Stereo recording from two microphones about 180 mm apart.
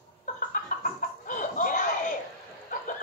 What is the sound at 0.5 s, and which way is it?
Chicken, 50° left (ahead or behind).